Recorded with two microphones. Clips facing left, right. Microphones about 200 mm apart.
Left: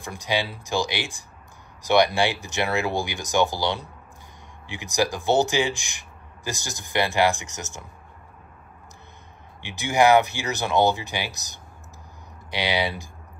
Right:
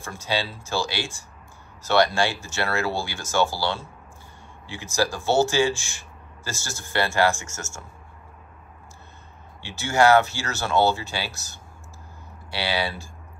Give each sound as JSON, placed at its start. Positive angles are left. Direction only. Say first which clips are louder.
{"t": 0.0, "sound": "speech", "louder": "left 1 dB", "side_deg": 15}
{"t": 9.6, "sound": "speech", "louder": "even", "side_deg": 15}